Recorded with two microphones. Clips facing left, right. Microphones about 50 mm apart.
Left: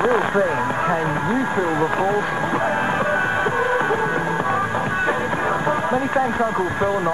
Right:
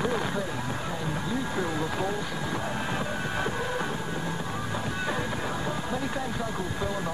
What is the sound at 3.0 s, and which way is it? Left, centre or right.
Music, left.